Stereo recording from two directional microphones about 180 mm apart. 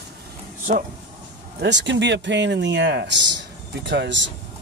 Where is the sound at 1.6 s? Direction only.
75° right (ahead or behind).